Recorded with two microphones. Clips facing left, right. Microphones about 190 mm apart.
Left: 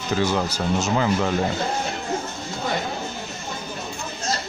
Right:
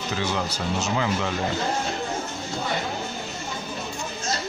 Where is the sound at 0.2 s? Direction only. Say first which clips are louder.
Left 5 dB; 40° left (ahead or behind).